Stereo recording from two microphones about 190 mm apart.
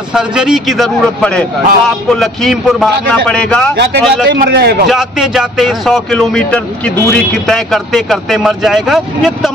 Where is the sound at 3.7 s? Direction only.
65° right (ahead or behind).